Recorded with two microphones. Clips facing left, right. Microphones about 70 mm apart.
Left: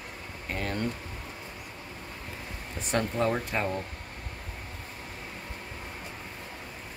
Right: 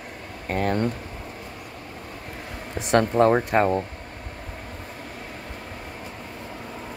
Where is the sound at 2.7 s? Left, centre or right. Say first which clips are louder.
Right 9 dB; right.